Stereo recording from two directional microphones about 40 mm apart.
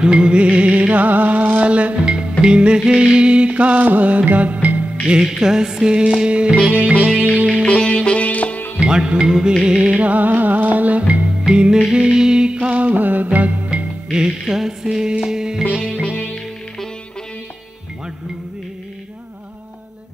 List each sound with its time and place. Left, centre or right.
0.0 s music: right
5.0 s music: centre
6.7 s music: right
7.6 s music: left
8.3 s music: left
8.7 s music: right
9.9 s music: right
11.4 s music: right
11.9 s a sound: centre
12.8 s music: right
14.5 s music: centre
16.1 s music: left